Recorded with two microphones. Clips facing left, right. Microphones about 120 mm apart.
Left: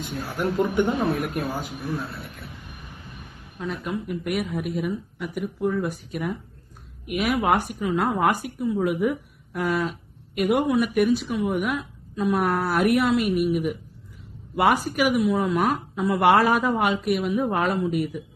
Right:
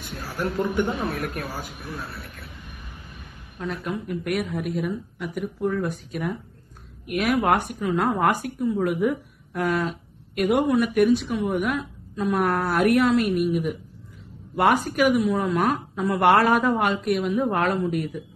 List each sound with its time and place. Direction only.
0.0 s speech: 20° left (ahead or behind)
3.5 s speech: centre (ahead or behind)